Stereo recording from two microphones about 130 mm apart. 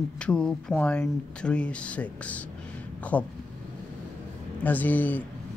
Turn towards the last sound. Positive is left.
turn(degrees=15)  # may be behind; listen again after turning